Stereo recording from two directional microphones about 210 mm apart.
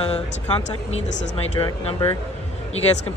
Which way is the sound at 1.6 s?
15° left (ahead or behind).